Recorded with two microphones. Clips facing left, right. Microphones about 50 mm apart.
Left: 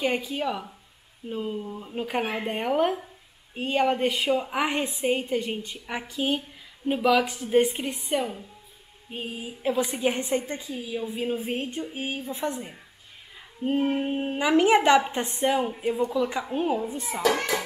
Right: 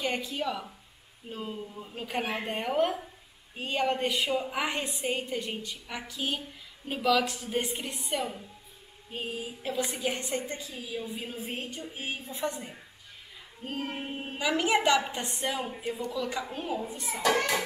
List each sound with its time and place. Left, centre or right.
0.0 s a woman's voice: centre
10.0 s a woman's voice: left